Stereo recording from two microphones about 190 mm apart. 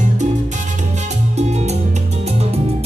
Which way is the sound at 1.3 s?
35° right (ahead or behind).